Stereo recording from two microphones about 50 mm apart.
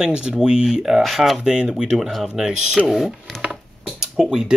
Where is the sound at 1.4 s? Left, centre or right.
Centre.